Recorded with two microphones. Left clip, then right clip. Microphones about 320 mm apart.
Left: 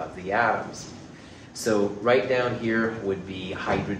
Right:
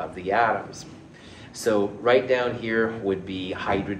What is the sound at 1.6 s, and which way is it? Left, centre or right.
A man's voice, right.